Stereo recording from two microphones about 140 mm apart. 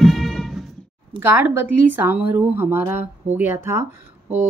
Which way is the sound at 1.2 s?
15° right (ahead or behind).